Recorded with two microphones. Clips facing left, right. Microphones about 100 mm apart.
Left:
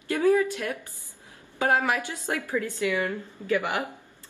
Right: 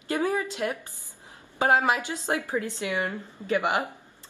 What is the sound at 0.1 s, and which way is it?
A woman's voice, 20° right (ahead or behind).